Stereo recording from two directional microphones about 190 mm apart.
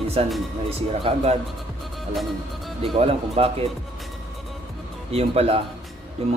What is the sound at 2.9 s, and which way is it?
Speech, 30° right (ahead or behind).